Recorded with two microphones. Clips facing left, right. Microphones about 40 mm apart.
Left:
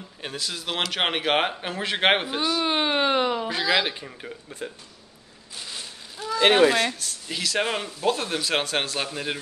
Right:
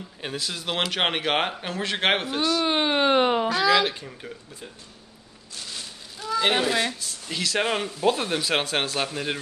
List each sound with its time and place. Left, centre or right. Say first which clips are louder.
0.2 s speech: right 1 dB; centre
2.6 s speech: even; centre
3.5 s speech: right 2 dB; left
3.8 s speech: right 2 dB; centre
5.6 s a sound: even; centre
6.7 s speech: left 2 dB; centre